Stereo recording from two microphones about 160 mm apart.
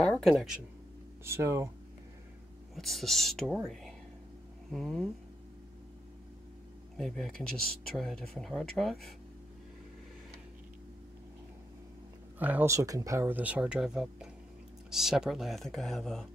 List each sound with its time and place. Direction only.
0.0 s speech: 5° left (ahead or behind)
1.2 s speech: 15° right (ahead or behind)
2.7 s speech: centre (ahead or behind)
7.0 s speech: 5° left (ahead or behind)
12.4 s speech: 10° right (ahead or behind)